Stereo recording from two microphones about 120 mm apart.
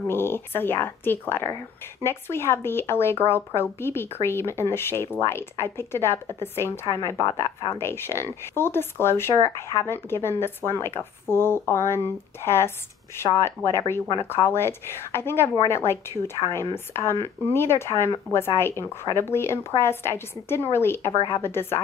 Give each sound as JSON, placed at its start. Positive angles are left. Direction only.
{"t": 0.0, "sound": "speech", "side_deg": 20}